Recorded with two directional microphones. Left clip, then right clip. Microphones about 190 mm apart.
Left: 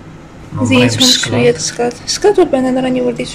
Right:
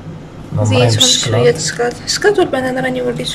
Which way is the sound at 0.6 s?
15° left (ahead or behind).